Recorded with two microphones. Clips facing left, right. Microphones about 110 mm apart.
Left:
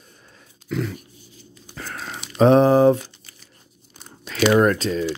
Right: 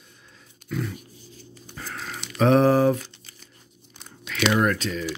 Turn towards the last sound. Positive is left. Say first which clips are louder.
# left 6 dB
turn(degrees=35)  # may be behind; listen again after turning